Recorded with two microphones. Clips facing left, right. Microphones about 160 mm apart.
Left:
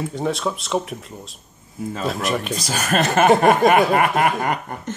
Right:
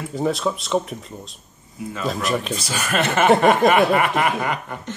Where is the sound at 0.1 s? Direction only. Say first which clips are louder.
Right 1 dB; centre (ahead or behind).